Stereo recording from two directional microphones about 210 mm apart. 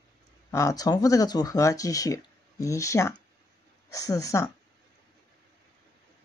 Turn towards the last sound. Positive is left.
turn(degrees=15)  # may be behind; listen again after turning